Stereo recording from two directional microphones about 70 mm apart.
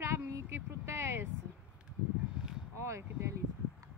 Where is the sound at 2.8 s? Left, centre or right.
Right.